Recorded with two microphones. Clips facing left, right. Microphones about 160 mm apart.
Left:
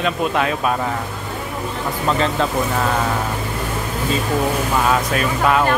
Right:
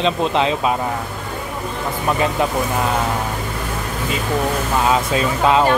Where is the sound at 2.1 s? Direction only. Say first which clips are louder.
Even; 15° right (ahead or behind).